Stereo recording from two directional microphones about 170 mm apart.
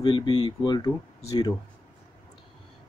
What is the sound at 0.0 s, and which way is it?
Speech, 25° left (ahead or behind).